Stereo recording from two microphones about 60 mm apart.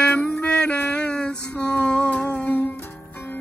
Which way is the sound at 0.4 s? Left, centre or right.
Left.